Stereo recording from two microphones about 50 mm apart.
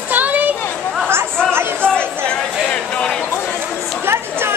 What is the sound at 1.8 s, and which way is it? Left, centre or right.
Chatter, left.